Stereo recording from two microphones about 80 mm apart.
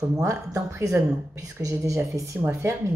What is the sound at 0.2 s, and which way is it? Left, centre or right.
A woman's voice, right.